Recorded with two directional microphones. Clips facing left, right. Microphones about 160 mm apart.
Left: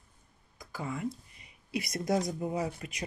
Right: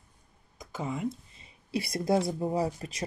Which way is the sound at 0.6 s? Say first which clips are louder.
Right 3 dB; 20° right (ahead or behind).